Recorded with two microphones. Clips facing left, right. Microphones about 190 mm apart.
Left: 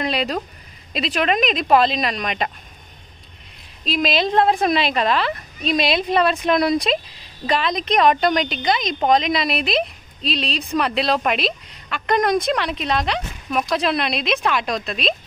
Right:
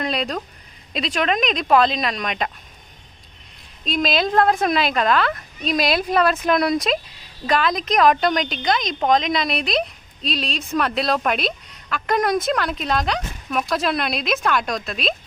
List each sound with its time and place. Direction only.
0.0 s a woman's voice: 5° left (ahead or behind)
3.8 s a woman's voice: centre (ahead or behind)